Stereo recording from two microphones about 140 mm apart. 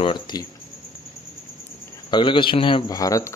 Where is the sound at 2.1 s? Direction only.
35° left (ahead or behind).